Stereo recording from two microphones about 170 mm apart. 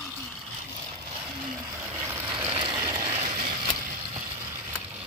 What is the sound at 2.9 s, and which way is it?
Vehicle, 20° right (ahead or behind).